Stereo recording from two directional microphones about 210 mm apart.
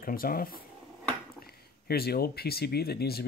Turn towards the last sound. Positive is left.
turn(degrees=45)  # may be behind; listen again after turning